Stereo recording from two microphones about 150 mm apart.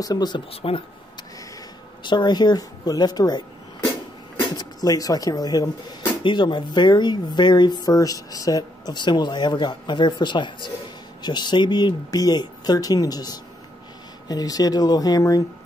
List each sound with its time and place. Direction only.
0.0 s speech: 25° left (ahead or behind)
0.5 s speech: 40° left (ahead or behind)
2.0 s speech: 30° left (ahead or behind)